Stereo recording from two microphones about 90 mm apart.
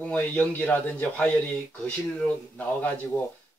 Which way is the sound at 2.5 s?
20° left (ahead or behind).